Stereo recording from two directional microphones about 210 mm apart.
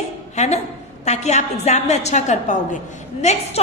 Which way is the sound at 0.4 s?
35° left (ahead or behind).